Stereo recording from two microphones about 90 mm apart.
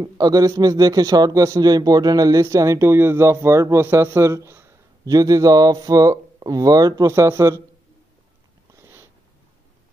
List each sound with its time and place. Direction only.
0.0 s a man's voice: 45° right (ahead or behind)
7.1 s a man's voice: 30° right (ahead or behind)
8.7 s a sound: 30° right (ahead or behind)